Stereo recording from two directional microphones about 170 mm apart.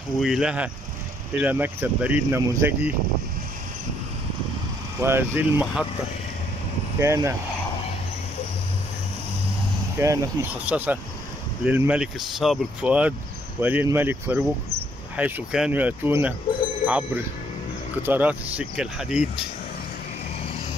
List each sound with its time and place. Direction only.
0.2 s speech: 5° right (ahead or behind)
5.0 s speech: 10° right (ahead or behind)
7.0 s speech: 15° right (ahead or behind)
9.9 s speech: 15° right (ahead or behind)